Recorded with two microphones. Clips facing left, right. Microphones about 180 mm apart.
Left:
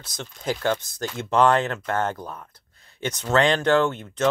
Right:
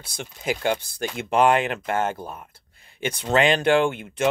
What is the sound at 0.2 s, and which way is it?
Speech, 10° right (ahead or behind).